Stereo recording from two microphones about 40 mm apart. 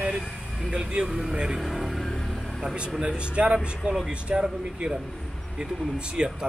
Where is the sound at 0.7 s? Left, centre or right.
Right.